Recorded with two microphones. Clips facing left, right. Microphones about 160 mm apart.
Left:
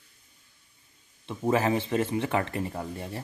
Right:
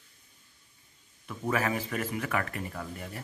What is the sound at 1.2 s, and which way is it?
Speech, 30° left (ahead or behind).